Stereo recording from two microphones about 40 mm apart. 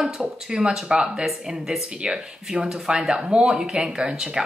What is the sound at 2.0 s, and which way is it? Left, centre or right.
Speech, right.